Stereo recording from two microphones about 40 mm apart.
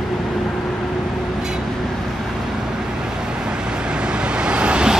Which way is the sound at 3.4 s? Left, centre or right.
Right.